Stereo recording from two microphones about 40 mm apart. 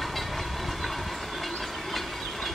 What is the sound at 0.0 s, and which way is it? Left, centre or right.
Train, centre.